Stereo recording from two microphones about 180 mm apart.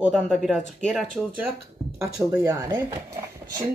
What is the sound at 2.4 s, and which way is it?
Speech, 15° right (ahead or behind).